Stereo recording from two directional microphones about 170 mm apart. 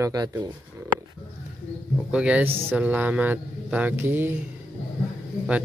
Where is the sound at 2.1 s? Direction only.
5° right (ahead or behind).